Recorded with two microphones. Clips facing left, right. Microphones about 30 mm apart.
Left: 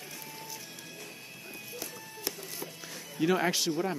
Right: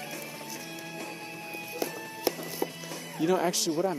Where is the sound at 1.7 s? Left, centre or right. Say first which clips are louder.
Right 8 dB; right.